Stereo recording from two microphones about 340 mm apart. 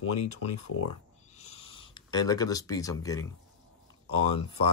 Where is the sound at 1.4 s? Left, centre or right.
Centre.